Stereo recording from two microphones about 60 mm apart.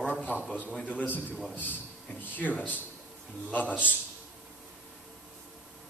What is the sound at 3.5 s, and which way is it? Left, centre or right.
Speech, left.